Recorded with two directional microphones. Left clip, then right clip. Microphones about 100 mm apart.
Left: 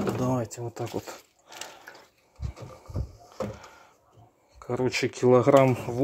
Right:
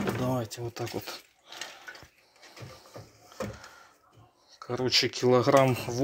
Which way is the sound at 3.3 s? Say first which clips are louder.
Left 3 dB; 50° left (ahead or behind).